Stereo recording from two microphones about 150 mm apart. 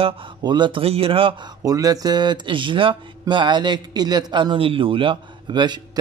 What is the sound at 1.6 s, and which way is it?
Speech, 25° right (ahead or behind).